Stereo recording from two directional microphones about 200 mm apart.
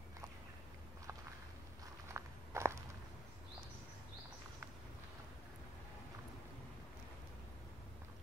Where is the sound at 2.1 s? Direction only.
15° right (ahead or behind).